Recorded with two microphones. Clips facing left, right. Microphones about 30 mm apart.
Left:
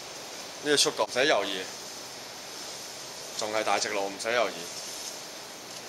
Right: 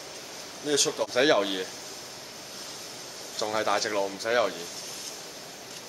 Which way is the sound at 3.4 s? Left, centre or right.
Centre.